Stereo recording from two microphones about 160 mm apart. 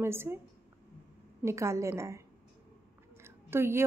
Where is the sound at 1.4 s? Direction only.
15° right (ahead or behind).